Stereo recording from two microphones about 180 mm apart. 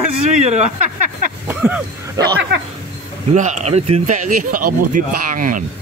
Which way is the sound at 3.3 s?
40° right (ahead or behind).